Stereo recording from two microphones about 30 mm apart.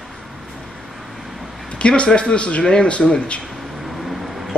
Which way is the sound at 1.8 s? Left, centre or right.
Left.